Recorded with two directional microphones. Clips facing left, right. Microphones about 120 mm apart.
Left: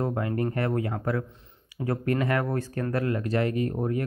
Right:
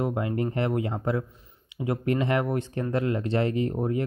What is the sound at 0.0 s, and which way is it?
Speech, 15° right (ahead or behind).